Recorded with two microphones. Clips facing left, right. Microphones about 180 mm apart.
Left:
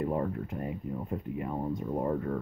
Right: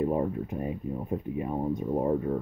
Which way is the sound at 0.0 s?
20° right (ahead or behind).